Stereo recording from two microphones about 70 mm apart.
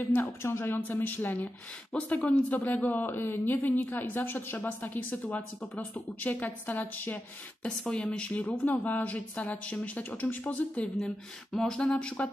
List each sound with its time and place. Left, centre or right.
0.0 s speech: left
7.6 s speech: centre
11.5 s a sound: centre